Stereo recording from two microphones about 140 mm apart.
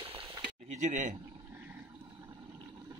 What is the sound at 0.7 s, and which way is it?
Speech, 60° right (ahead or behind).